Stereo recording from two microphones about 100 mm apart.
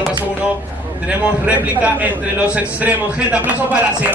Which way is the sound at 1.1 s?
15° right (ahead or behind).